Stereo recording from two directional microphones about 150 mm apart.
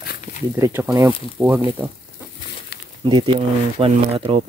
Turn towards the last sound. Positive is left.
turn(degrees=-40)  # may be behind; listen again after turning